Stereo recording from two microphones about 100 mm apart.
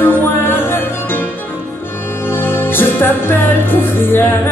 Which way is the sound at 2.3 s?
20° left (ahead or behind).